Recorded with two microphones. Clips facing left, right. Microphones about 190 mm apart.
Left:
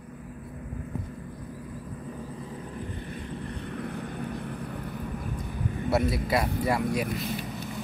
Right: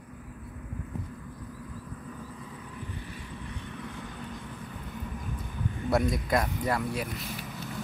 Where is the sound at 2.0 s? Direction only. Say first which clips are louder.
Left 4 dB; 30° left (ahead or behind); by 4.9 s 60° left (ahead or behind).